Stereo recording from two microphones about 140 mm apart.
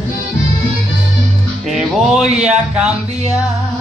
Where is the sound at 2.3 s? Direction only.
50° right (ahead or behind).